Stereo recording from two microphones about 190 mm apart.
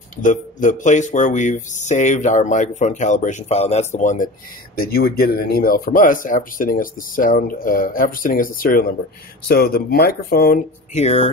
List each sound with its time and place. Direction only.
0.1 s speech: 40° left (ahead or behind)
4.7 s speech: 55° left (ahead or behind)
10.9 s speech: 35° left (ahead or behind)